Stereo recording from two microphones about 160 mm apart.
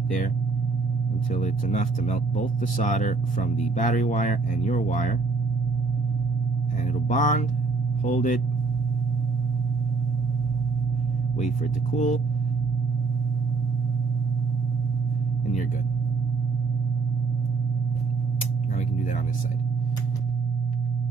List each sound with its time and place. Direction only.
1.3 s speech: 50° left (ahead or behind)
7.1 s speech: 55° left (ahead or behind)
11.3 s speech: 50° left (ahead or behind)